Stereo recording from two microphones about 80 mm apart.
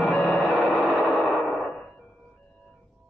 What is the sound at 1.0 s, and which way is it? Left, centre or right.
Gong, centre.